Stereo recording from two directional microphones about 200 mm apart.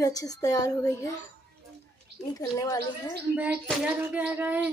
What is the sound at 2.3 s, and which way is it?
Speech, 15° left (ahead or behind).